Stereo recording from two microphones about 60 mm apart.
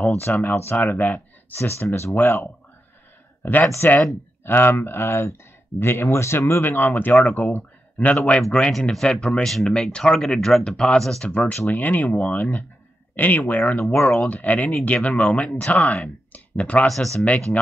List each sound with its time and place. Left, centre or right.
0.2 s speech: left
1.6 s speech: left
3.6 s speech: left
6.6 s speech: left
8.3 s speech: centre
11.2 s speech: left
13.7 s speech: left
16.8 s speech: centre